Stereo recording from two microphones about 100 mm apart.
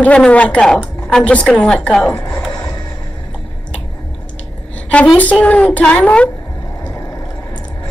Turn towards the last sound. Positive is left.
turn(degrees=15)  # may be behind; listen again after turning